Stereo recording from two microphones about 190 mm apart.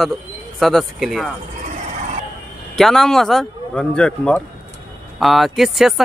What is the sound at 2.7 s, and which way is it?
Speech, centre (ahead or behind).